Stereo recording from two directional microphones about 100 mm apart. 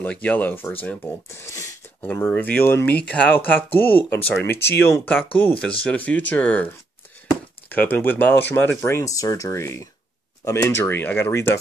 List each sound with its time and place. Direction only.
0.0 s speech: 15° left (ahead or behind)
2.2 s speech: 15° left (ahead or behind)
7.7 s speech: 20° left (ahead or behind)